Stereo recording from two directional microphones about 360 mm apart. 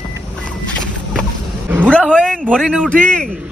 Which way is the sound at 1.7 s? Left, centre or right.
Centre.